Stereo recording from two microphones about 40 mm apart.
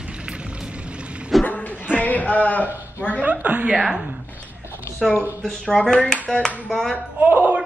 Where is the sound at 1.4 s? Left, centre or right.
Left.